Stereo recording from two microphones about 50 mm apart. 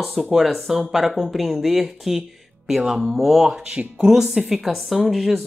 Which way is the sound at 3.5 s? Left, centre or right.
Centre.